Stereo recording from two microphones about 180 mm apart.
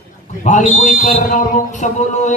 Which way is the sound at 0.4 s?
45° left (ahead or behind).